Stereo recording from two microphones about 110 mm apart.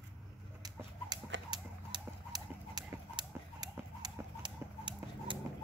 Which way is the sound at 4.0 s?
45° right (ahead or behind).